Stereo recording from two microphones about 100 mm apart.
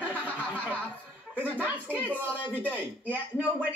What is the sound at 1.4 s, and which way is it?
Speech, 15° right (ahead or behind).